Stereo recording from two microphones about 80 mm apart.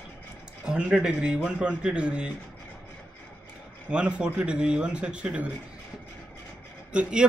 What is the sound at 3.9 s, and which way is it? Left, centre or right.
A man's voice, centre.